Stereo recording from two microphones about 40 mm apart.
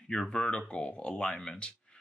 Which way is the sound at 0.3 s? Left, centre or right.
Left.